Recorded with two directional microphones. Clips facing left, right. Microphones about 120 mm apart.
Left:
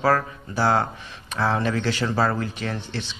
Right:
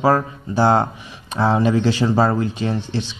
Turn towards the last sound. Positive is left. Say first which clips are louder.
# right 7 dB
turn(degrees=-15)  # may be behind; listen again after turning